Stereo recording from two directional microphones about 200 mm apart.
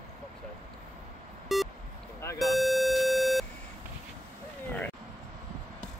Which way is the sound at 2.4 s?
Centre (ahead or behind).